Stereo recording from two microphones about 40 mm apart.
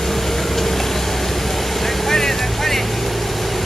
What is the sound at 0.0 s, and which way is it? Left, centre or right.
Vehicle, centre.